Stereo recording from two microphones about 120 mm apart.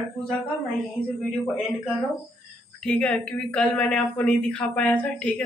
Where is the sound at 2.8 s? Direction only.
10° left (ahead or behind).